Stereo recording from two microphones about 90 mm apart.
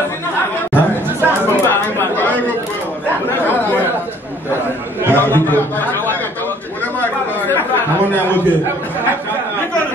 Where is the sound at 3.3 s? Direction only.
20° left (ahead or behind).